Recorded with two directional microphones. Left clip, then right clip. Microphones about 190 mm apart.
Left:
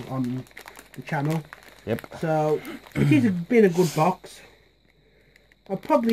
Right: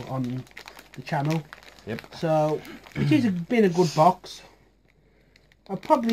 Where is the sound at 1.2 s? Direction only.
5° left (ahead or behind).